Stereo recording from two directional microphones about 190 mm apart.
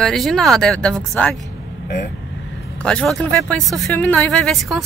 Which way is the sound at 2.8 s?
5° left (ahead or behind).